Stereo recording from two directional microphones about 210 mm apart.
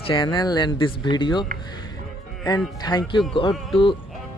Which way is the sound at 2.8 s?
20° left (ahead or behind).